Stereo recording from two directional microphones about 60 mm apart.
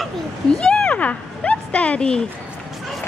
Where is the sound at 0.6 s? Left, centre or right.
Centre.